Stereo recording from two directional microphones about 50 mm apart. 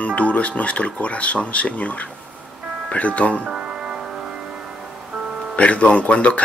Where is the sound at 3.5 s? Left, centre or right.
Centre.